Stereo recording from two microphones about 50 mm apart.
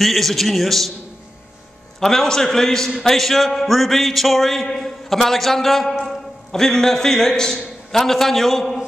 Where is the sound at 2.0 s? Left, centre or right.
Centre.